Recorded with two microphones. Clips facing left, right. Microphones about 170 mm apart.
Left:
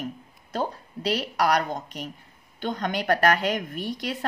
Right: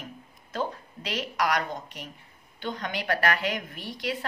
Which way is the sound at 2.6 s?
45° left (ahead or behind).